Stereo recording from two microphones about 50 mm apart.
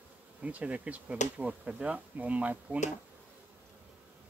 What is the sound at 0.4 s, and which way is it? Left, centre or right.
Speech, right.